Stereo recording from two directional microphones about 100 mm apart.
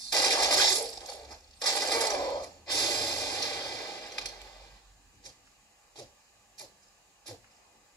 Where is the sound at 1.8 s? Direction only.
35° left (ahead or behind).